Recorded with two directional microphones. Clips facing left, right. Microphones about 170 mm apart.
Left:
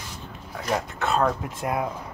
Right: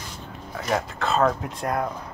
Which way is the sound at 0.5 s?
Centre (ahead or behind).